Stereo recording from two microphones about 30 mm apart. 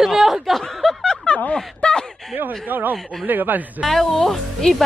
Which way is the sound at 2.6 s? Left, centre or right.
Right.